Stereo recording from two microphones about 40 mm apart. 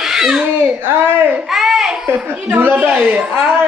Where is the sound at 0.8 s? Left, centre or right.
Right.